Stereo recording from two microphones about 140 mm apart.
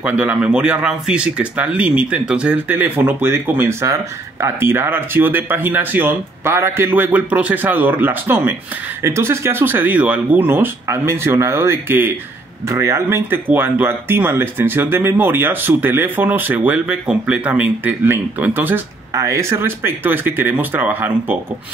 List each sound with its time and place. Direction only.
0.0 s speech: 10° right (ahead or behind)